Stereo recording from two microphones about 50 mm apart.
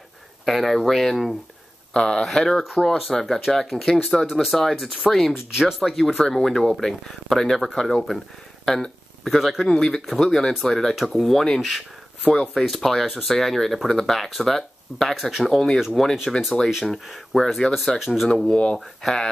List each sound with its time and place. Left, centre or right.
0.5 s speech: centre
2.0 s speech: centre
5.3 s speech: centre
5.8 s speech: centre
9.8 s speech: centre
18.5 s speech: left
18.8 s speech: centre